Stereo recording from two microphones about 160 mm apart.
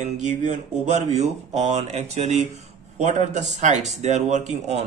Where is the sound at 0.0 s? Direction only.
50° right (ahead or behind).